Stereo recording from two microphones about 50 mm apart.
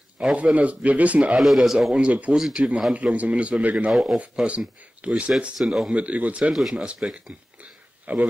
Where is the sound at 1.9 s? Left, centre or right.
Right.